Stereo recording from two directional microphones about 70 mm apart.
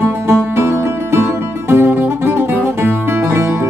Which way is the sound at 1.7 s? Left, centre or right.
Right.